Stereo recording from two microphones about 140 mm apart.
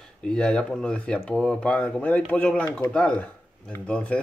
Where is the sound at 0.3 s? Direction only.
5° left (ahead or behind).